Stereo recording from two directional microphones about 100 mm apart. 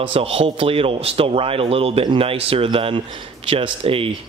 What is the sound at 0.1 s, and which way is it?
Speech, 75° right (ahead or behind).